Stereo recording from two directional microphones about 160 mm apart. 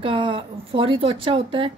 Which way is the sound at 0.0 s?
30° right (ahead or behind).